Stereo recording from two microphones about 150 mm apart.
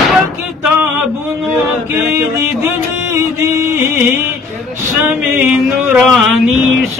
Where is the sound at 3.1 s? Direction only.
15° right (ahead or behind).